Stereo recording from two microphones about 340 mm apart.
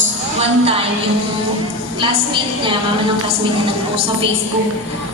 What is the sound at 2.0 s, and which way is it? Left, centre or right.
Speech, centre.